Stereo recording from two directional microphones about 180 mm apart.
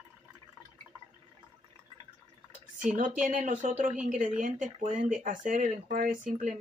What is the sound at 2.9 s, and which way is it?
Speech, 45° right (ahead or behind).